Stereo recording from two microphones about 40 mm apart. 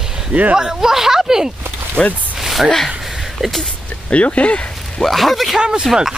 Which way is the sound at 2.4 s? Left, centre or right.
Centre.